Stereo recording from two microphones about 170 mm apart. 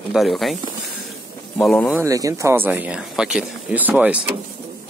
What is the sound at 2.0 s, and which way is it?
Speech, 20° right (ahead or behind).